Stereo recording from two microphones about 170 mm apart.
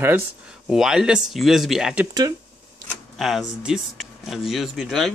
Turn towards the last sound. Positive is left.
turn(degrees=0)  # may be behind; listen again after turning